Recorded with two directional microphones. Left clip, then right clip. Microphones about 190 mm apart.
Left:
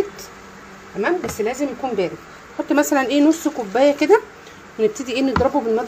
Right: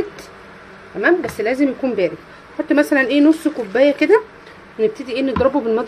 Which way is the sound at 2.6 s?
10° right (ahead or behind).